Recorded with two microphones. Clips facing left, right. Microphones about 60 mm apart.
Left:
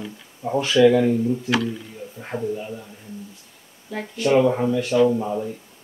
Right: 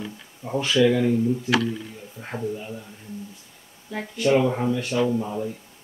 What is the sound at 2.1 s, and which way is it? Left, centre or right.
Speech, centre.